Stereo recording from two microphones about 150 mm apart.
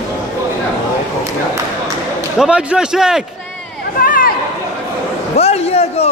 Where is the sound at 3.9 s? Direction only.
70° left (ahead or behind).